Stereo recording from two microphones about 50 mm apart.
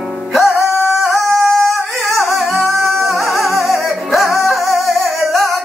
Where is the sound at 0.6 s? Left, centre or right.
Centre.